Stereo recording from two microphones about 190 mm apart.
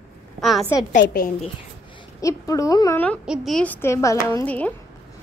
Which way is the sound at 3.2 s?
Centre (ahead or behind).